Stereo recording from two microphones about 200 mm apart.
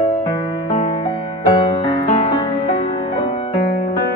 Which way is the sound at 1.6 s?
30° left (ahead or behind).